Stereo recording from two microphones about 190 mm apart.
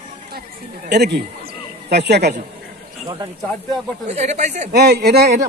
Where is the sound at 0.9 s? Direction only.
60° right (ahead or behind).